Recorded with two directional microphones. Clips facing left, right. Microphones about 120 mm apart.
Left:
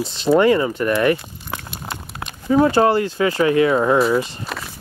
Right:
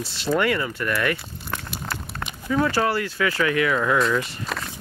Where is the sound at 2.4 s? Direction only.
30° left (ahead or behind).